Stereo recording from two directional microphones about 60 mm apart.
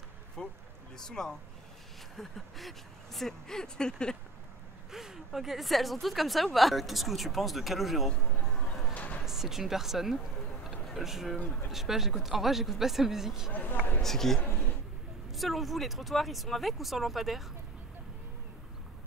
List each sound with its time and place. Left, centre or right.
0.4 s speech: centre
4.9 s a woman's voice: centre
8.9 s a sound: left
9.2 s speech: centre
10.7 s a sound: centre
11.7 s a woman's voice: centre
13.5 s speech: left
14.0 s a woman's voice: centre